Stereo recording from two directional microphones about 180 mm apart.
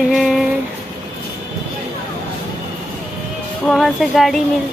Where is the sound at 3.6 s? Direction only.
Centre (ahead or behind).